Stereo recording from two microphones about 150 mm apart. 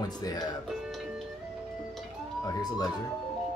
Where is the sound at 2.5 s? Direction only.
25° left (ahead or behind).